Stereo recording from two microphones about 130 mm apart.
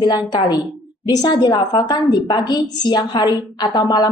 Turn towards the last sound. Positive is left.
turn(degrees=30)  # may be behind; listen again after turning